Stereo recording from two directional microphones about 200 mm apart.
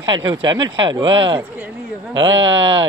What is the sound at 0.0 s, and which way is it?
Speech, 20° right (ahead or behind).